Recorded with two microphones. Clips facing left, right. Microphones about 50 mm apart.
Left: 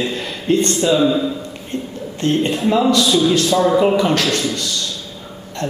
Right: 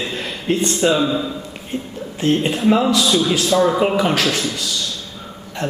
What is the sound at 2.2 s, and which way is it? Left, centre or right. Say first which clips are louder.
Speech: even; centre.